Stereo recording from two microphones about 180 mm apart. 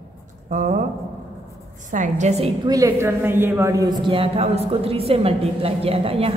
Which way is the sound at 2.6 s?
20° right (ahead or behind).